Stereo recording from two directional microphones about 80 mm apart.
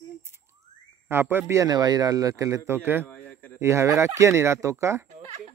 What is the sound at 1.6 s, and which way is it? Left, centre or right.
Speech, right.